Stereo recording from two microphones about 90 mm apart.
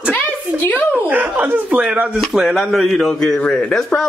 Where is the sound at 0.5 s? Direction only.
20° left (ahead or behind).